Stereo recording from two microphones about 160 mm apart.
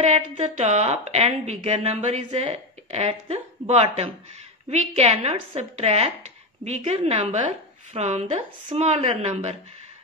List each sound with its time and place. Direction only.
0.0 s a woman's voice: 45° right (ahead or behind)